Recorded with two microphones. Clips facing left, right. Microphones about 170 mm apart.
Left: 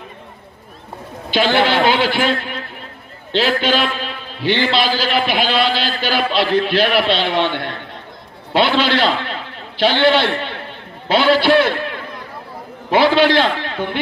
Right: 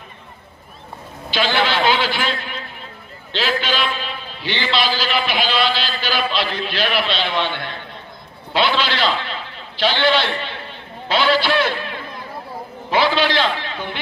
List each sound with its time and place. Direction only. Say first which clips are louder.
1.3 s a man's voice: left 4 dB; 50° left (ahead or behind)
3.3 s a man's voice: left 5 dB; 50° left (ahead or behind)
12.9 s a man's voice: left 5 dB; 55° left (ahead or behind)